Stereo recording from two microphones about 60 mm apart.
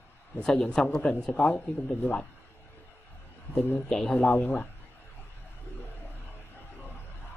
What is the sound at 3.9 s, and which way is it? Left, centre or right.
Speech, centre.